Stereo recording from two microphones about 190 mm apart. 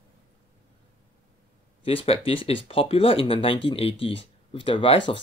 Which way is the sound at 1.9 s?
30° left (ahead or behind).